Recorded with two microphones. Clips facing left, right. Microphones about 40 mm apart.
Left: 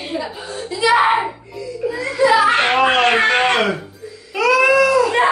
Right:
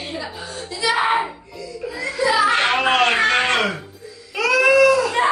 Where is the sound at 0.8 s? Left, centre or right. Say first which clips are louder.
Left 6 dB; left.